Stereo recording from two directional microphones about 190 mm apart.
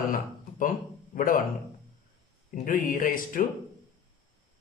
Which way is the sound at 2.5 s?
45° left (ahead or behind).